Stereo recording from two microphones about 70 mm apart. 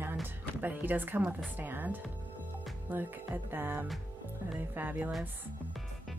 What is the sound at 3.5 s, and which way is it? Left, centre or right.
A woman's voice, right.